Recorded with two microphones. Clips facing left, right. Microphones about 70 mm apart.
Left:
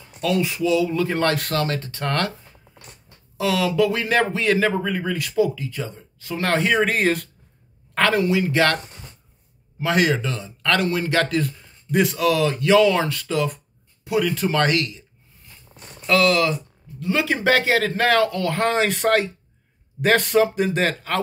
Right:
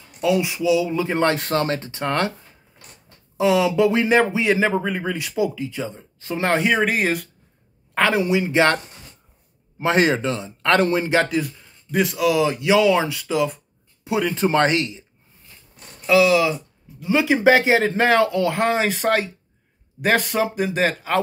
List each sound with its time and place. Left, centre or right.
0.2 s speech: centre
3.3 s a man's voice: centre
9.8 s a man's voice: right; by 13.5 s centre
14.0 s speech: right
16.1 s a man's voice: centre